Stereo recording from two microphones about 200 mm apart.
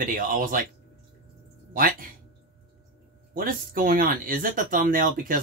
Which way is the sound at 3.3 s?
45° right (ahead or behind).